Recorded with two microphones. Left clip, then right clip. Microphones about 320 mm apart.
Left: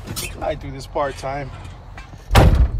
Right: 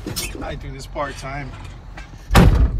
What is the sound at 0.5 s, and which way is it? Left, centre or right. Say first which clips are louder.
Speech: left 5 dB; centre.